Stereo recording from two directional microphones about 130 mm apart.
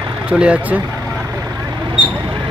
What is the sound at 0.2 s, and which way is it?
Speech, 10° right (ahead or behind).